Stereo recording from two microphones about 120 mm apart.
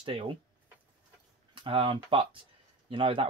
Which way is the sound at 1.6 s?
45° right (ahead or behind).